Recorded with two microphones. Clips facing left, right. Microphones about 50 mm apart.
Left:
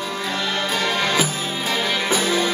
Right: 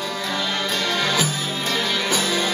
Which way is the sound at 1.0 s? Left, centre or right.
Centre.